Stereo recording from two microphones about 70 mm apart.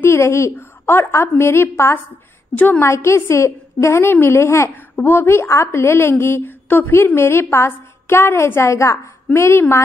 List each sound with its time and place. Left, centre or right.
0.0 s a woman's voice: left
2.5 s a woman's voice: centre
2.8 s a woman's voice: left